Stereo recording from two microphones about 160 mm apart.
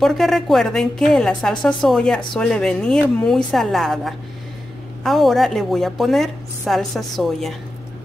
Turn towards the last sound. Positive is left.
turn(degrees=0)  # may be behind; listen again after turning